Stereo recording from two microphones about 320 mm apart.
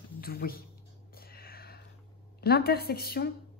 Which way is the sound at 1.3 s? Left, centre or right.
Left.